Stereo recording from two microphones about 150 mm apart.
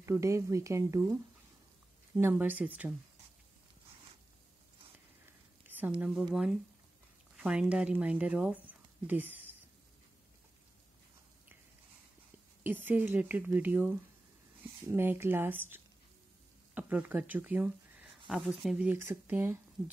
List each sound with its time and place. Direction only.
0.0 s speech: 20° right (ahead or behind)
2.1 s speech: 15° right (ahead or behind)
5.2 s a sound: 10° right (ahead or behind)
6.3 s speech: 5° right (ahead or behind)
12.6 s speech: 15° right (ahead or behind)